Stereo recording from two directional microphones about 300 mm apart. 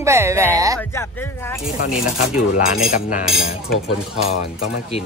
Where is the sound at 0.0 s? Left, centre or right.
Centre.